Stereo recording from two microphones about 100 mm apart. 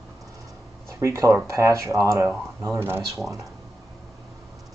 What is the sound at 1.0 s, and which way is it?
Speech, 35° right (ahead or behind).